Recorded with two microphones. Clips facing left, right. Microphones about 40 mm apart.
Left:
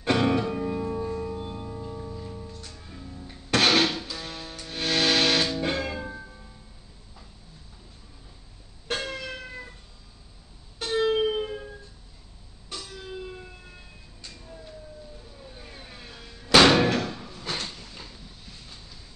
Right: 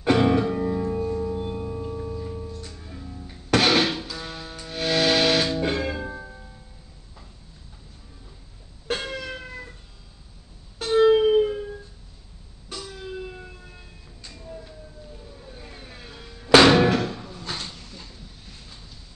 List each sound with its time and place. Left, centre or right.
0.0 s music: centre
1.3 s music: centre
9.1 s cat: centre
10.8 s music: centre
12.9 s siren: centre
15.3 s music: centre
17.4 s a sound: centre